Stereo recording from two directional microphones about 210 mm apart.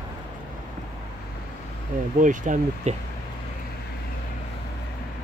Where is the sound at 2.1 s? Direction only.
35° right (ahead or behind).